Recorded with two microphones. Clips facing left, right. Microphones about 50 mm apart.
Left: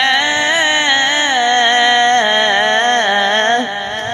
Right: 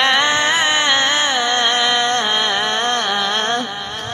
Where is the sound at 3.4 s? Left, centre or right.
Left.